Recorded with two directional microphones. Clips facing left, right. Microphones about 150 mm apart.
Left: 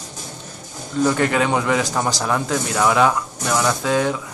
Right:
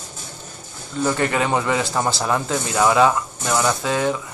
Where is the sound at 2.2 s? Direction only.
5° right (ahead or behind).